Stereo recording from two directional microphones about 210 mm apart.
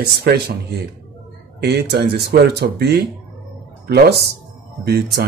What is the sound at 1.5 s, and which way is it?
Speech, 50° right (ahead or behind).